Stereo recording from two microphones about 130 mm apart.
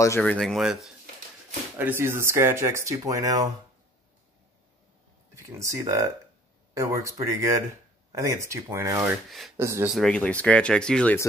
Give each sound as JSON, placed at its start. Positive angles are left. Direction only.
{"t": 0.2, "sound": "speech", "side_deg": 5}
{"t": 1.8, "sound": "speech", "side_deg": -15}
{"t": 5.3, "sound": "speech", "side_deg": -25}
{"t": 9.9, "sound": "speech", "side_deg": 5}